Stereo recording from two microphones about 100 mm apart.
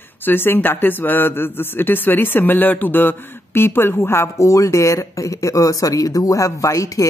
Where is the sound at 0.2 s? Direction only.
20° left (ahead or behind).